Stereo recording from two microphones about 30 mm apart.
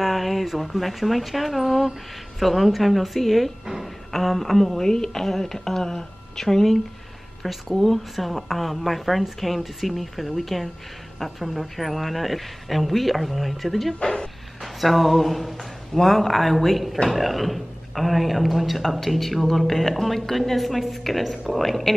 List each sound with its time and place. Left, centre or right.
0.0 s a woman's voice: centre
14.0 s speech: left
14.6 s a sound: centre
15.9 s speech: centre